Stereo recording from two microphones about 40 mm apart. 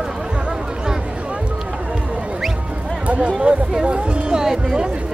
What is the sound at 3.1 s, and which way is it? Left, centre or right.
Speech, right.